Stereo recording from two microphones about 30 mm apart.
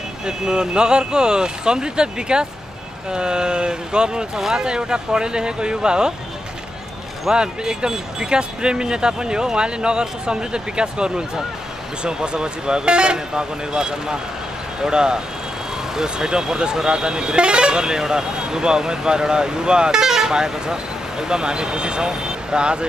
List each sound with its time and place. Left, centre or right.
0.2 s speech: right
7.3 s speech: right
19.9 s speech: centre